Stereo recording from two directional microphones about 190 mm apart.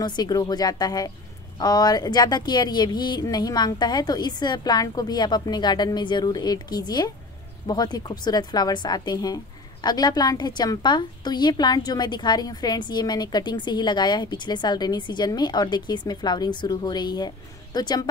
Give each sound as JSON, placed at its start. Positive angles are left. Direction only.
{"t": 0.0, "sound": "a woman's voice", "side_deg": 20}